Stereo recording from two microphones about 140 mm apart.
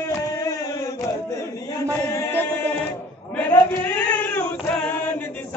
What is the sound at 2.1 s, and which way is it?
Choir, 15° left (ahead or behind).